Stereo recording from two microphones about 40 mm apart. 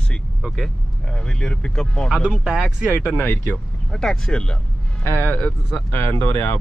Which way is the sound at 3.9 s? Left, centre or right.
Centre.